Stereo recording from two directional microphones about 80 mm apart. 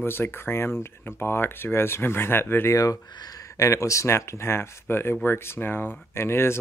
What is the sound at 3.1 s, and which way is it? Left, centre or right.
Speech, left.